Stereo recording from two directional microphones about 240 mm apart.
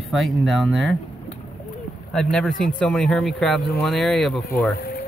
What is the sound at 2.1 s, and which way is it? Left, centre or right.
Speech, centre.